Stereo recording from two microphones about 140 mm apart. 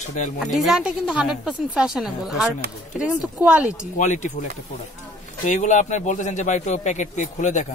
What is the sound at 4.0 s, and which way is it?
Speech, 60° left (ahead or behind).